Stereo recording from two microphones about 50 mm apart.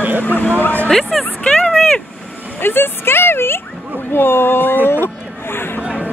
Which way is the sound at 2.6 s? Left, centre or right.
Left.